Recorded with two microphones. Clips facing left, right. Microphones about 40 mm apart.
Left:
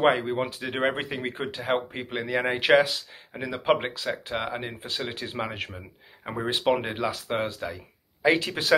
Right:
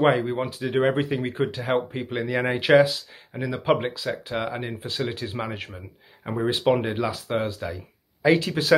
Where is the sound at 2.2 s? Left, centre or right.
Centre.